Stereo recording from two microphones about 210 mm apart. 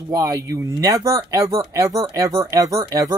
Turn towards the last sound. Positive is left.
turn(degrees=-15)  # may be behind; listen again after turning